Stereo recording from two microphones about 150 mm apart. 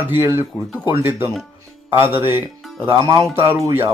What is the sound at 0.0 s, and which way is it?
Speech, 15° right (ahead or behind).